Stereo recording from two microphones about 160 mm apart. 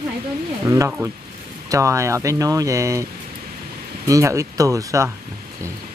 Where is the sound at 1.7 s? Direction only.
20° right (ahead or behind).